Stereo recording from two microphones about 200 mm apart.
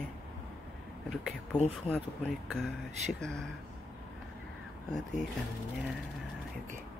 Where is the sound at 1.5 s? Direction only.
20° left (ahead or behind).